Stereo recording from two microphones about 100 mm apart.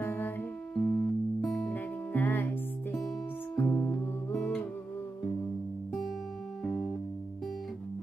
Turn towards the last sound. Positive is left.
turn(degrees=15)  # may be behind; listen again after turning